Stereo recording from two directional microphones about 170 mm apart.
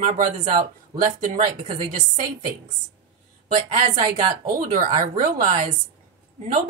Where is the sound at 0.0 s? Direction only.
40° right (ahead or behind).